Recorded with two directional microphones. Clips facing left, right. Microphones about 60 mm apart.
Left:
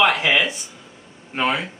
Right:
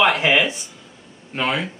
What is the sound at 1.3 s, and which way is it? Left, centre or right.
Speech, centre.